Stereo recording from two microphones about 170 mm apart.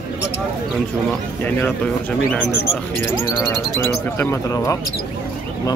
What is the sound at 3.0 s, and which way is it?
Speech, 10° left (ahead or behind).